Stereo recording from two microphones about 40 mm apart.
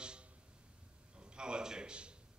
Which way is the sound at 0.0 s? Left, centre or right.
Right.